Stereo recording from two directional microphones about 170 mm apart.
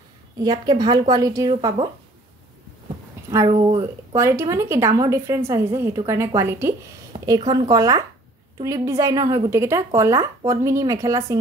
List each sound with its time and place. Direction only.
0.4 s speech: 25° right (ahead or behind)
3.4 s speech: 30° right (ahead or behind)
4.1 s a woman's voice: 15° right (ahead or behind)
7.1 s a woman's voice: 25° right (ahead or behind)